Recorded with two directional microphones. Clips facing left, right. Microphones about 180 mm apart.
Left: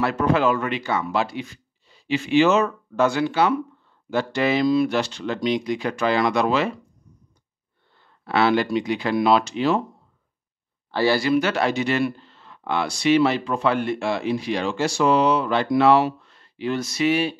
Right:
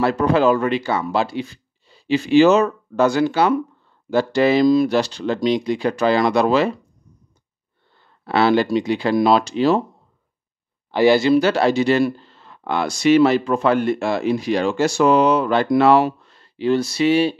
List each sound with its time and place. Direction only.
0.0 s speech: 35° right (ahead or behind)
8.3 s speech: 35° right (ahead or behind)
10.9 s speech: 20° right (ahead or behind)